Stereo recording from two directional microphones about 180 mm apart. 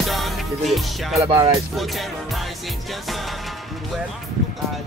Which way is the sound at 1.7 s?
Centre (ahead or behind).